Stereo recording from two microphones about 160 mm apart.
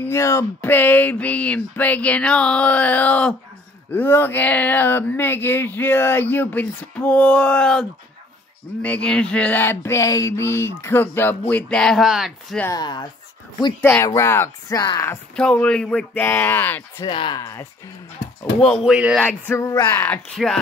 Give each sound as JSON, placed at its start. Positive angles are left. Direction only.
{"t": 0.0, "sound": "speech", "side_deg": 15}
{"t": 8.8, "sound": "speech", "side_deg": 5}
{"t": 12.7, "sound": "speech", "side_deg": 25}
{"t": 15.3, "sound": "speech", "side_deg": 5}
{"t": 17.0, "sound": "speech", "side_deg": 30}
{"t": 18.6, "sound": "speech", "side_deg": 0}
{"t": 19.2, "sound": "speech", "side_deg": 15}
{"t": 20.4, "sound": "speech", "side_deg": 0}